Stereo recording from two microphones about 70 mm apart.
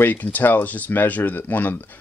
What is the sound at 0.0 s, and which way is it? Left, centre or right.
Speech, left.